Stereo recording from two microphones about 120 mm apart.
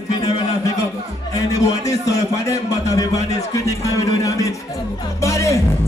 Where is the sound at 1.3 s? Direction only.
30° left (ahead or behind).